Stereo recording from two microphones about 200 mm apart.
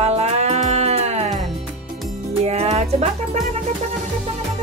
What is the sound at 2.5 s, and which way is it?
Music, 30° right (ahead or behind).